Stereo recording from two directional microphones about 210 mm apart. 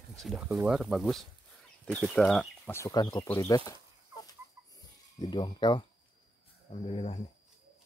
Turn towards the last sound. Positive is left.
turn(degrees=25)  # may be behind; listen again after turning